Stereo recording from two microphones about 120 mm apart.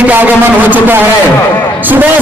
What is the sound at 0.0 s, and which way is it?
Speech, 15° right (ahead or behind).